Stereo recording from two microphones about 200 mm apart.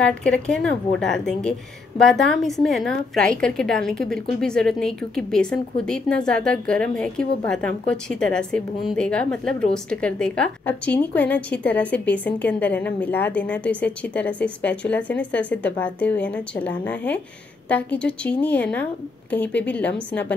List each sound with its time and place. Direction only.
0.0 s a woman's voice: 5° left (ahead or behind)